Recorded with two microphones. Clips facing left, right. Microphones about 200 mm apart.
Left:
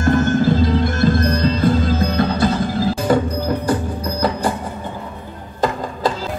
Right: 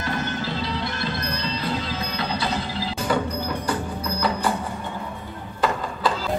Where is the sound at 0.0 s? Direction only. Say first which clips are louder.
Left 12 dB; 50° left (ahead or behind).